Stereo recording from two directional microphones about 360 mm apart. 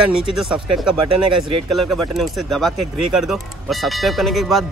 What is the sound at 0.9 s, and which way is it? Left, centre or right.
Speech, right.